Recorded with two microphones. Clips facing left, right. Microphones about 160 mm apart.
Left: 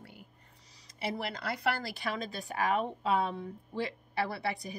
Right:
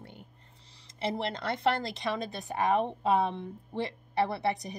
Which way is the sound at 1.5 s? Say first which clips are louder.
Right 5 dB; 20° right (ahead or behind).